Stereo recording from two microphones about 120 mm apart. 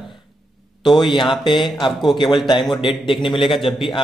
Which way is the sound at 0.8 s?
40° left (ahead or behind).